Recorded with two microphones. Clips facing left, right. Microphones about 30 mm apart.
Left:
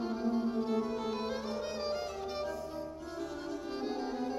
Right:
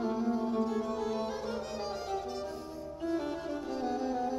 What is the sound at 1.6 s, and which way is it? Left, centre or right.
Violin, left.